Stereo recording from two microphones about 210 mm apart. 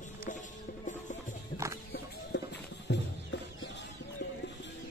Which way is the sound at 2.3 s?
55° left (ahead or behind).